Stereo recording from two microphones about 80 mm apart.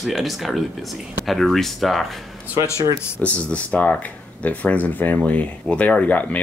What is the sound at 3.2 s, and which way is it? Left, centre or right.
Speech, centre.